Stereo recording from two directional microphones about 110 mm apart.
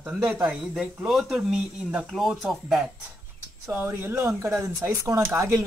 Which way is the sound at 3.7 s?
20° right (ahead or behind).